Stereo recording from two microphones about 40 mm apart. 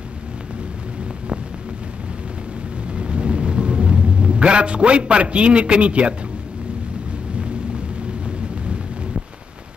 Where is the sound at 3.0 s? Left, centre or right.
Right.